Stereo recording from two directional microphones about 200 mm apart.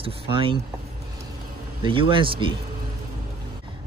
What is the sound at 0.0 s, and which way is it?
Speech, 25° right (ahead or behind).